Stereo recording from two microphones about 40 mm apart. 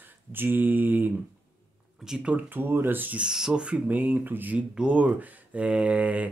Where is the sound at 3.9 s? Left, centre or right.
Right.